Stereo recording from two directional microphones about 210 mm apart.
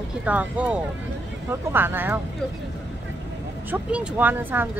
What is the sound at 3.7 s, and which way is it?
Speech, 10° right (ahead or behind).